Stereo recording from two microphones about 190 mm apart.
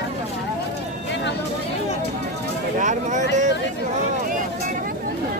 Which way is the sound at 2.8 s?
40° right (ahead or behind).